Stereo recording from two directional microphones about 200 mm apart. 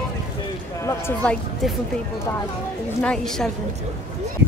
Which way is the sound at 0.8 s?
5° left (ahead or behind).